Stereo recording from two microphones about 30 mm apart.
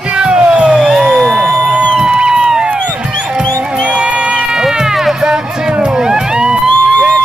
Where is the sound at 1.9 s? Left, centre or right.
Right.